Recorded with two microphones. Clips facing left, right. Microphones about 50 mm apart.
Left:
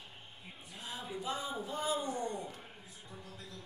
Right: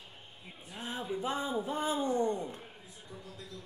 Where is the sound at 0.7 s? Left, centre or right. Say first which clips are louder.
Right 6 dB; right.